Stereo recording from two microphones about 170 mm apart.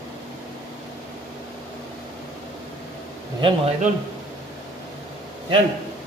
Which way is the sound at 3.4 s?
30° right (ahead or behind).